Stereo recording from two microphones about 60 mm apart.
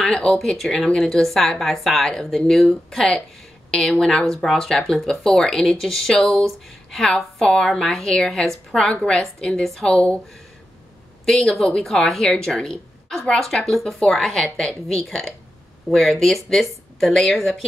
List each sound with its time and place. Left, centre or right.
0.0 s a woman's voice: centre
9.8 s speech: centre
11.2 s a woman's voice: centre